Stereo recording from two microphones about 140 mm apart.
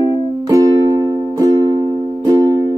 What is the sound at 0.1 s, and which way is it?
Music, 25° right (ahead or behind).